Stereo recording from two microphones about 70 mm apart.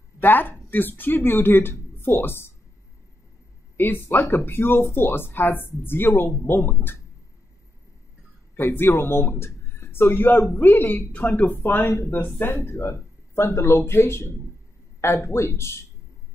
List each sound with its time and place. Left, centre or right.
0.2 s speech: left
3.7 s speech: left
8.5 s speech: left